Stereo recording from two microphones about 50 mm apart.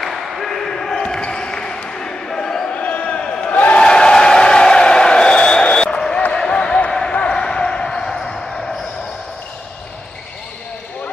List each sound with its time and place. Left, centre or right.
0.0 s basketball bounce: centre
2.7 s a sound: left; by 6.2 s centre
6.3 s basketball bounce: centre